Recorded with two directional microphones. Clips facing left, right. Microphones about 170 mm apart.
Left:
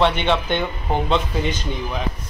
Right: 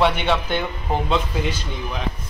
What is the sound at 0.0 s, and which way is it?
Speech, 10° right (ahead or behind).